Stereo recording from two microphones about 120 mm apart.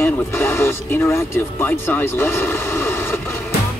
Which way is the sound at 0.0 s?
20° left (ahead or behind).